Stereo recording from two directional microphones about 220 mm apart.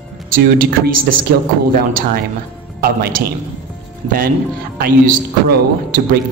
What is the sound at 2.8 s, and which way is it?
Speech, 45° right (ahead or behind).